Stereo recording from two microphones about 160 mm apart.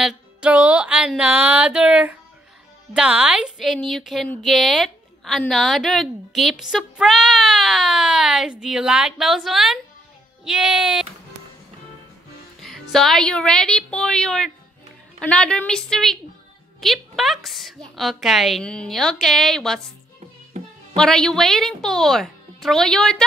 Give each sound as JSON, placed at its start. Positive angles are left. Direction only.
{"t": 0.0, "sound": "music", "side_deg": -5}
{"t": 2.9, "sound": "a woman's voice", "side_deg": -5}
{"t": 12.5, "sound": "music", "side_deg": 0}
{"t": 12.9, "sound": "speech", "side_deg": 0}
{"t": 20.5, "sound": "music", "side_deg": -45}
{"t": 20.9, "sound": "speech", "side_deg": 5}